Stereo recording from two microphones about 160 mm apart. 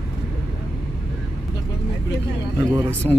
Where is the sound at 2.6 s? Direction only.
20° right (ahead or behind).